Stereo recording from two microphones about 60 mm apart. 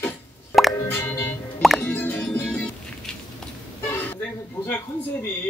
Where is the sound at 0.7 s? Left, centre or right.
Left.